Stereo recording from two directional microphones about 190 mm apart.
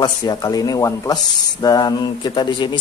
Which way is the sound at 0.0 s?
20° left (ahead or behind).